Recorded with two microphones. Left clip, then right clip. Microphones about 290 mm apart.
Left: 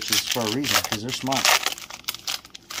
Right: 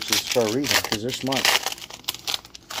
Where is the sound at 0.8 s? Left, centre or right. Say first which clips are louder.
Right 1 dB; centre.